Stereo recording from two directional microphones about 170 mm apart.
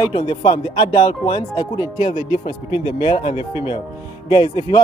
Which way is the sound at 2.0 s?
40° left (ahead or behind).